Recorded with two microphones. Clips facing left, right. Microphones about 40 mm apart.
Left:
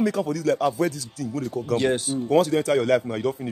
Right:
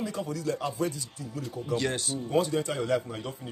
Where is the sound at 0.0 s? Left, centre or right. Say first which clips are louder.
Left 9 dB; left.